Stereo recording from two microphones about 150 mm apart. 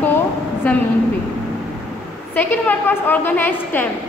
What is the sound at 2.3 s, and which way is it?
A woman's voice, 10° left (ahead or behind).